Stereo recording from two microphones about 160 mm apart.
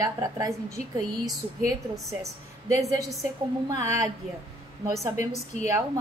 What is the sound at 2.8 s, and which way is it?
A woman's voice, 20° right (ahead or behind).